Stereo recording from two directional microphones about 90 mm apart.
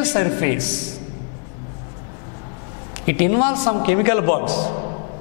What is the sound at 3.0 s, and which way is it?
A man's voice, 10° left (ahead or behind).